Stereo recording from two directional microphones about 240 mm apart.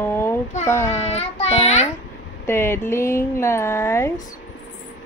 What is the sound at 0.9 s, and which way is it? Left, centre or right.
Speech, left.